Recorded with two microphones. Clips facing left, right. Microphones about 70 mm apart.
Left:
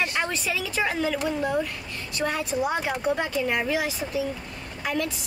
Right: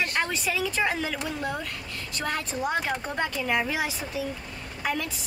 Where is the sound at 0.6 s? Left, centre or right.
Centre.